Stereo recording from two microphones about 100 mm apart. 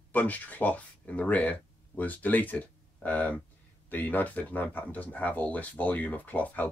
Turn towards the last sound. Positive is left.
turn(degrees=15)  # may be behind; listen again after turning